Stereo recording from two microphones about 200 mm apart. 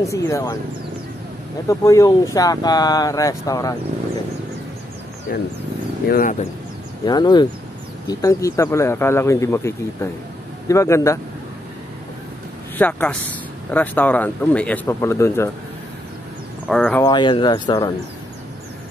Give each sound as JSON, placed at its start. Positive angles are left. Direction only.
{"t": 0.0, "sound": "speech", "side_deg": 15}
{"t": 1.7, "sound": "speech", "side_deg": 15}
{"t": 5.3, "sound": "speech", "side_deg": 45}
{"t": 7.1, "sound": "speech", "side_deg": 20}
{"t": 12.7, "sound": "speech", "side_deg": 5}
{"t": 16.6, "sound": "speech", "side_deg": 5}
{"t": 17.0, "sound": "speech", "side_deg": 25}